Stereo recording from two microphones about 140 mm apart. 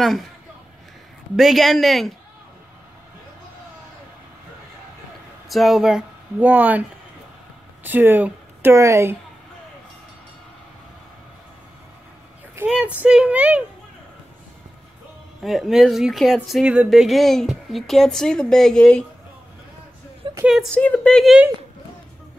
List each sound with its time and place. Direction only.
0.0 s speech: centre (ahead or behind)
1.3 s speech: centre (ahead or behind)
5.5 s speech: centre (ahead or behind)
7.8 s speech: 15° right (ahead or behind)
12.6 s speech: 5° right (ahead or behind)
15.4 s speech: centre (ahead or behind)
20.2 s a sound: 35° right (ahead or behind)
20.7 s speech: 10° left (ahead or behind)